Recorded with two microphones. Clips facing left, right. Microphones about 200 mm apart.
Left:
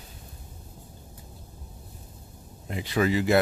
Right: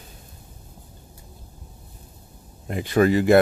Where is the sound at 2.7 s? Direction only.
50° right (ahead or behind).